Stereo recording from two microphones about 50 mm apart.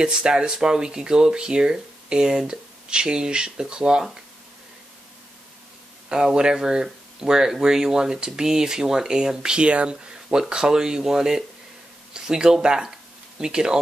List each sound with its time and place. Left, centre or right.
0.0 s speech: centre
6.0 s speech: centre